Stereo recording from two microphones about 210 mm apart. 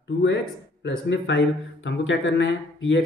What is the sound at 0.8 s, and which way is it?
Speech, 55° left (ahead or behind).